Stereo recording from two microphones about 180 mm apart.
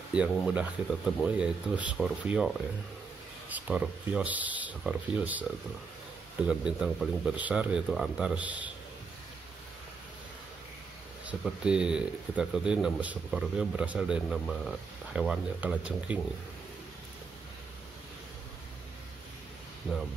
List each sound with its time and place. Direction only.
0.1 s speech: 5° right (ahead or behind)
6.4 s speech: 5° right (ahead or behind)
11.2 s speech: 5° right (ahead or behind)